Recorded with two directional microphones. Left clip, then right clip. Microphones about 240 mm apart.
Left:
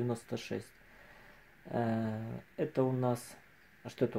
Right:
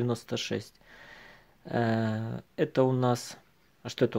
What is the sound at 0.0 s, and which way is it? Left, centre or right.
Speech, right.